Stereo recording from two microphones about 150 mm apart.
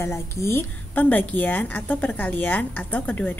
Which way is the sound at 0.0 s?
15° left (ahead or behind).